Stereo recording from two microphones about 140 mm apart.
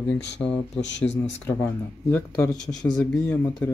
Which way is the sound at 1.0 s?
55° left (ahead or behind).